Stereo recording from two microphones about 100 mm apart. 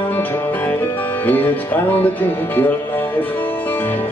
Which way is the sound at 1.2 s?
20° left (ahead or behind).